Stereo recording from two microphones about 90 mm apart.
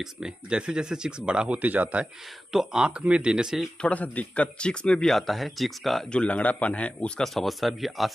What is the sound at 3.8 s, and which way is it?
Speech, 15° left (ahead or behind).